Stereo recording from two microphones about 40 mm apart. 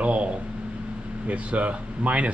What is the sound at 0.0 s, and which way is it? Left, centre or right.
Speech, right.